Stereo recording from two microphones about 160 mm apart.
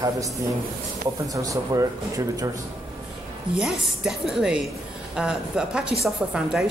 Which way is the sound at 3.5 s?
5° right (ahead or behind).